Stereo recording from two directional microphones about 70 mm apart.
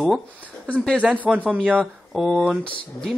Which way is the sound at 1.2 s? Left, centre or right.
Right.